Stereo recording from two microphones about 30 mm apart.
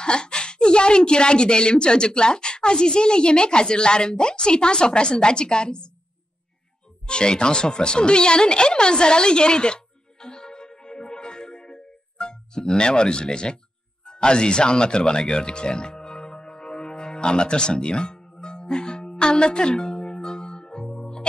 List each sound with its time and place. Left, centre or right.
0.0 s a woman's voice: left
7.1 s a sound: left
14.0 s speech: left
16.8 s music: left